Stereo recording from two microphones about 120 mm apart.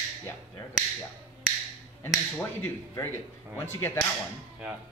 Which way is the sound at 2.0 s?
20° left (ahead or behind).